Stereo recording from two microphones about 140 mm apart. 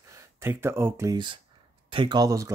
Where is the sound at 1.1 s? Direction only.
35° right (ahead or behind).